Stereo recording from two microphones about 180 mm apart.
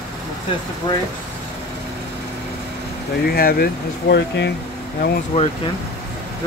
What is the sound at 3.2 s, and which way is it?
Speech, 60° left (ahead or behind).